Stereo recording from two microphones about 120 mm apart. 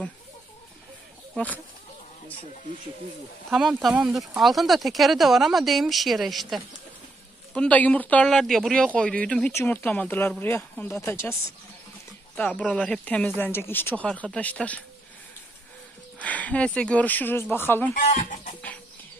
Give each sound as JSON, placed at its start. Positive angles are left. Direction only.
{"t": 1.3, "sound": "speech", "side_deg": 15}
{"t": 3.4, "sound": "speech", "side_deg": 0}
{"t": 7.5, "sound": "speech", "side_deg": 10}
{"t": 9.5, "sound": "speech", "side_deg": 20}
{"t": 12.4, "sound": "speech", "side_deg": 10}
{"t": 16.2, "sound": "speech", "side_deg": 10}
{"t": 17.9, "sound": "speech", "side_deg": 90}